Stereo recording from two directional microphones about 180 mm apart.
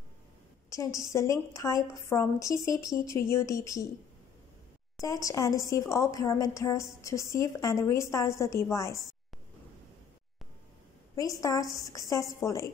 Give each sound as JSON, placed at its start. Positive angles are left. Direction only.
{"t": 0.7, "sound": "a woman's voice", "side_deg": 20}
{"t": 5.0, "sound": "a woman's voice", "side_deg": 20}
{"t": 11.1, "sound": "a woman's voice", "side_deg": 20}